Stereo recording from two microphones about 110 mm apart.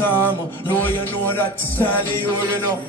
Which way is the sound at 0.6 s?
20° left (ahead or behind).